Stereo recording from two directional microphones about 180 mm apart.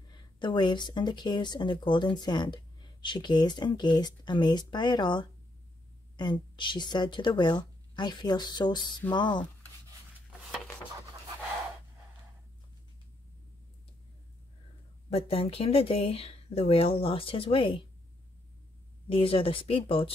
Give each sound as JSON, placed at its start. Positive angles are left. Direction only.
{"t": 0.1, "sound": "speech", "side_deg": 25}
{"t": 15.0, "sound": "speech", "side_deg": 35}
{"t": 19.0, "sound": "speech", "side_deg": 30}